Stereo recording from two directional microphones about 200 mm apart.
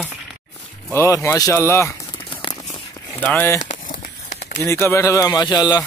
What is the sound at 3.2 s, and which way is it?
Speech, 10° left (ahead or behind).